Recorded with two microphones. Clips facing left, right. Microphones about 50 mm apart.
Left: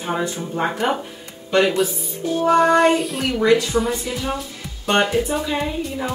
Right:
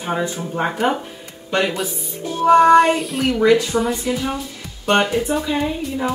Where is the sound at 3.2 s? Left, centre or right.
Centre.